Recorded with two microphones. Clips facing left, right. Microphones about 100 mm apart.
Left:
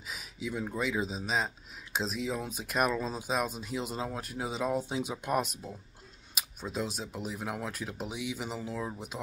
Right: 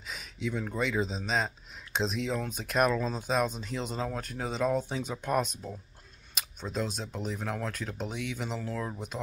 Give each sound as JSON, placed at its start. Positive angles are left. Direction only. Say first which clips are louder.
{"t": 0.0, "sound": "speech", "louder": "right 3 dB", "side_deg": 5}